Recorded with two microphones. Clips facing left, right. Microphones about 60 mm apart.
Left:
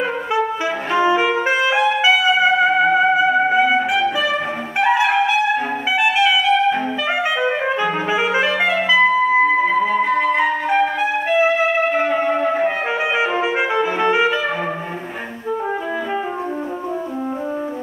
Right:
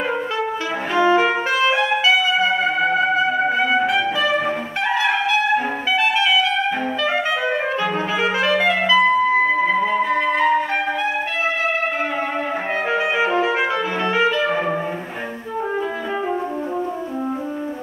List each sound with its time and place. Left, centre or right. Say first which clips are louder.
0.9 s music: right 1 dB; centre
4.7 s brass instrument: left 6 dB; centre
7.4 s clarinet: left 2 dB; centre
9.6 s music: left 1 dB; centre
10.3 s flute: left 1 dB; centre
12.0 s music: left 5 dB; centre
13.2 s music: even; centre